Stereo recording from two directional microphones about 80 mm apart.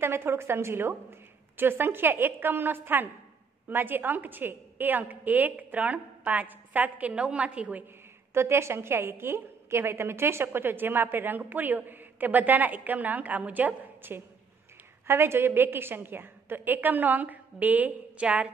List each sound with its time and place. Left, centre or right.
0.0 s a woman's voice: right
8.3 s a woman's voice: right; by 18.5 s centre